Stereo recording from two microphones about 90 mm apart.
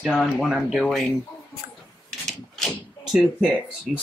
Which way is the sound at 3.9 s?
5° right (ahead or behind).